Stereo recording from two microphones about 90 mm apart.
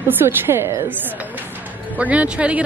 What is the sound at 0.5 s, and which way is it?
Speech, 35° right (ahead or behind).